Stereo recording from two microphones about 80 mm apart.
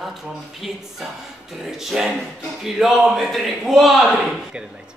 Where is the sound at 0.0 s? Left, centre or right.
Centre.